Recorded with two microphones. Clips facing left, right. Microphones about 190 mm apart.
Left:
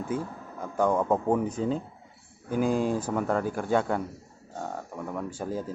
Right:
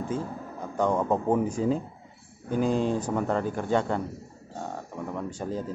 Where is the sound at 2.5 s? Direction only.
10° left (ahead or behind).